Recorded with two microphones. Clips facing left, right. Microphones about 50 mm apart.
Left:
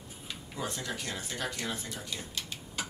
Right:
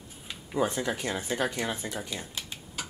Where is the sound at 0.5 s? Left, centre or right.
Right.